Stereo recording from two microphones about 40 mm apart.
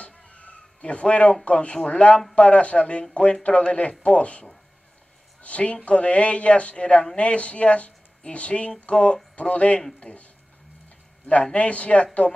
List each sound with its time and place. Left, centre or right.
0.0 s a sound: left
1.4 s a woman's voice: left
11.5 s speech: left